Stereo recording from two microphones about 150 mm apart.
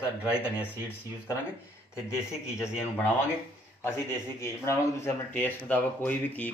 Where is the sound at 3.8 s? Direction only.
15° left (ahead or behind).